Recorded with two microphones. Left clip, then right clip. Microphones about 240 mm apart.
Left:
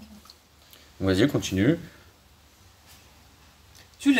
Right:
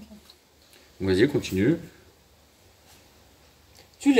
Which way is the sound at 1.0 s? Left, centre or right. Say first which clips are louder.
Right 1 dB; left.